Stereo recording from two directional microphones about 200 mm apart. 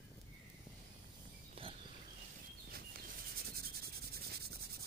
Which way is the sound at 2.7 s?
50° right (ahead or behind).